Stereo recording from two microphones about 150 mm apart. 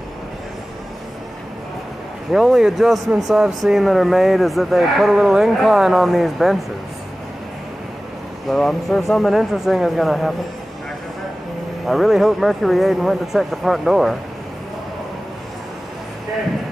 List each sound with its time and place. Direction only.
2.3 s speech: 5° right (ahead or behind)
8.5 s speech: centre (ahead or behind)
11.8 s speech: centre (ahead or behind)